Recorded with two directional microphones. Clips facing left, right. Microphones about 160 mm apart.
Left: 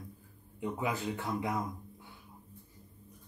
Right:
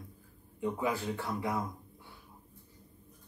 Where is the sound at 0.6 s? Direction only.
20° left (ahead or behind).